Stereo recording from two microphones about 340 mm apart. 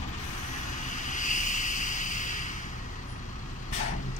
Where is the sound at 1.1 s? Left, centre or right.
Left.